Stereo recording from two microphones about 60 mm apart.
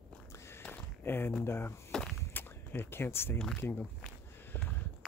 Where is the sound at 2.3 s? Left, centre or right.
Left.